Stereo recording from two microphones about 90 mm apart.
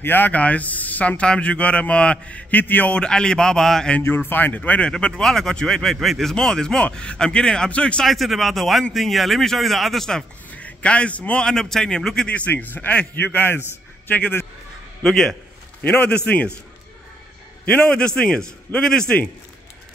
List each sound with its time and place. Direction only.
0.0 s speech: 20° left (ahead or behind)
4.0 s a man's voice: 20° left (ahead or behind)
15.0 s a man's voice: 5° left (ahead or behind)
17.6 s speech: 15° left (ahead or behind)